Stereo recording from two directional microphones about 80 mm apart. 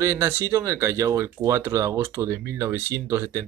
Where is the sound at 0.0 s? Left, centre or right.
Right.